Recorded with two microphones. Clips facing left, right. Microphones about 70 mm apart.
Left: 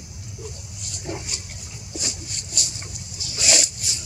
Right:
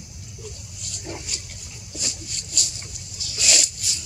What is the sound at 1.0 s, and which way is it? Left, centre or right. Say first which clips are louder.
Dog: left 3 dB; centre.